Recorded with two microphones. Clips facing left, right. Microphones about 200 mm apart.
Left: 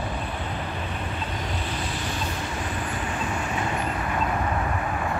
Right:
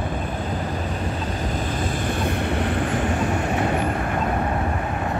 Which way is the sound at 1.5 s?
50° right (ahead or behind).